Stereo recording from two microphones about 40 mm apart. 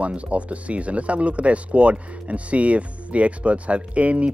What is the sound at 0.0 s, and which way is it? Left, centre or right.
Speech, right.